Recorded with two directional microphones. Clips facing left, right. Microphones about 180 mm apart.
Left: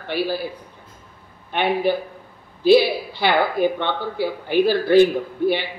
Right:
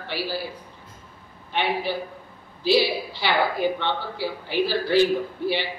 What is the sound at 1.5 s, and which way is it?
A woman's voice, 50° left (ahead or behind).